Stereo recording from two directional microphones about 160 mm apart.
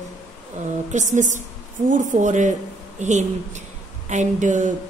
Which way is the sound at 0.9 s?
50° right (ahead or behind).